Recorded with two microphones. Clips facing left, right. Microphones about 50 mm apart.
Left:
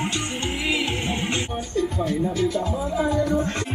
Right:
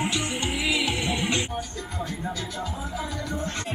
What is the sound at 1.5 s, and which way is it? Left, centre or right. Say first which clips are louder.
Music: left 8 dB; left.